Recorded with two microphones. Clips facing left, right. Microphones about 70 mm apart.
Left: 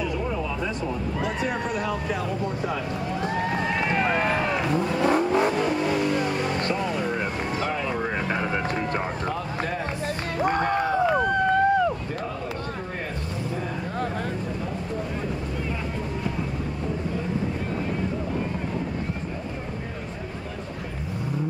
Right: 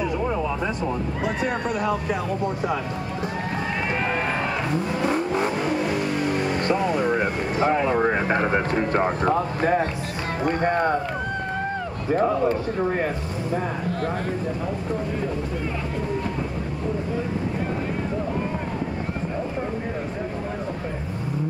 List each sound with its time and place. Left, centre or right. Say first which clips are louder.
1.2 s speech: right 2 dB; centre
3.9 s vehicle: left 2 dB; centre
7.6 s speech: right 10 dB; right
10.7 s speech: right 2 dB; centre
12.1 s speech: right 11 dB; centre